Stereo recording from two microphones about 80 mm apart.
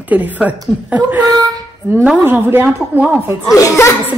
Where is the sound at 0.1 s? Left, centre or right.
Centre.